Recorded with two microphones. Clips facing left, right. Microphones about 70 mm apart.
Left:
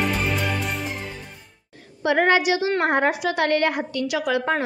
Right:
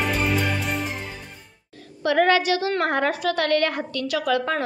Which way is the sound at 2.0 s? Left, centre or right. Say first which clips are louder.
Even; left.